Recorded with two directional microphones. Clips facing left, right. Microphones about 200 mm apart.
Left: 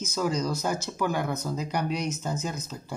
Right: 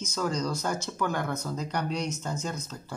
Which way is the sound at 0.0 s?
5° left (ahead or behind).